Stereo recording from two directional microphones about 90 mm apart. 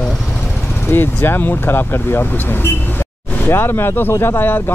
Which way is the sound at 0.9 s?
25° left (ahead or behind).